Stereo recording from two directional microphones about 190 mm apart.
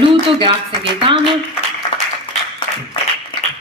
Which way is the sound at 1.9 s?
25° left (ahead or behind).